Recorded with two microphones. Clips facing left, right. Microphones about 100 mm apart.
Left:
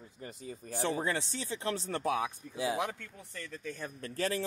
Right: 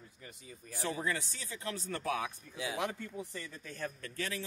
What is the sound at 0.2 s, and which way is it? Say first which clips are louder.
Speech: left 9 dB; 35° left (ahead or behind).